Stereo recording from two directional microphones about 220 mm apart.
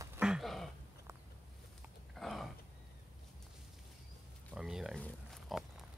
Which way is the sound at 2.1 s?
Centre (ahead or behind).